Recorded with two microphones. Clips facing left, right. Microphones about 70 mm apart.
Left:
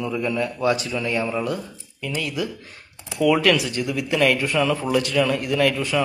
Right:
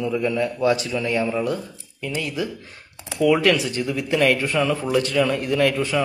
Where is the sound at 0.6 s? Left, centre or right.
Left.